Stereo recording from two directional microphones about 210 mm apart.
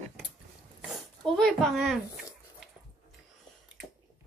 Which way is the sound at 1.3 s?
Centre (ahead or behind).